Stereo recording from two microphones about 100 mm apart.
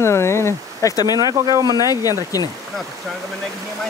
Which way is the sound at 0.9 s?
40° left (ahead or behind).